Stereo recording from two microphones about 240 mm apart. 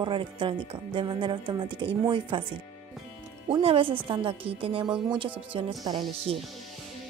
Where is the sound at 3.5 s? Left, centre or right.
Right.